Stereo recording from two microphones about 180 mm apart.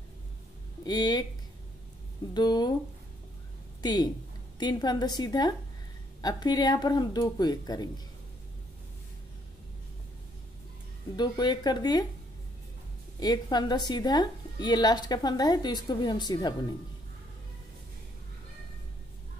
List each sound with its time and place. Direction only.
0.8 s a woman's voice: 20° left (ahead or behind)
2.3 s a woman's voice: 25° left (ahead or behind)
3.8 s a woman's voice: 25° left (ahead or behind)
11.1 s a woman's voice: 25° left (ahead or behind)
13.2 s a woman's voice: 20° left (ahead or behind)